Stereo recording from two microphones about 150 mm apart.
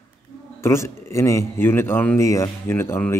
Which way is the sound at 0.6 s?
15° left (ahead or behind).